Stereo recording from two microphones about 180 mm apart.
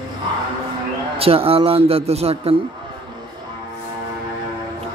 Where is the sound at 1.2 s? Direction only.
30° right (ahead or behind).